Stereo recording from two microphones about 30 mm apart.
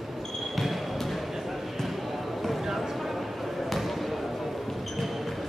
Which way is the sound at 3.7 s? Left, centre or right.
Centre.